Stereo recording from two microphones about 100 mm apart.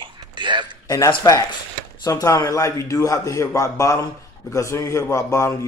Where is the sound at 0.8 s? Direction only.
35° left (ahead or behind).